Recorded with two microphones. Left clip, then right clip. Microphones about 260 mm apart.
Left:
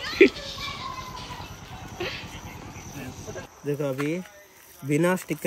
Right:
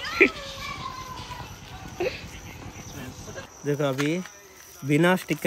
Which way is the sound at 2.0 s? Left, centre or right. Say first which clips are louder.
Right 3 dB; centre.